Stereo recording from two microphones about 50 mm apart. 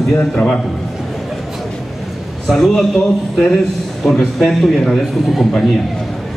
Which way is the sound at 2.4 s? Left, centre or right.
Centre.